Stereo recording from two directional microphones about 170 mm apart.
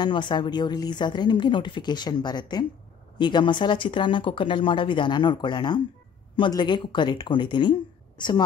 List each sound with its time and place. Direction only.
0.0 s a woman's voice: 25° left (ahead or behind)